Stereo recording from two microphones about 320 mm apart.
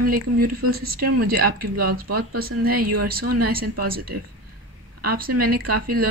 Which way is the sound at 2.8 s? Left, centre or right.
Right.